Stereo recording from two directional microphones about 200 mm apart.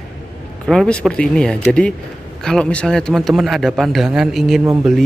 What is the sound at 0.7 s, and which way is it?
Speech, 5° left (ahead or behind).